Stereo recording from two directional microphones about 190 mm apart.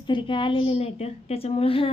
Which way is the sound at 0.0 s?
25° left (ahead or behind).